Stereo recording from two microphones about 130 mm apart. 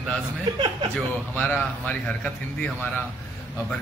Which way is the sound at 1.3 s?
10° left (ahead or behind).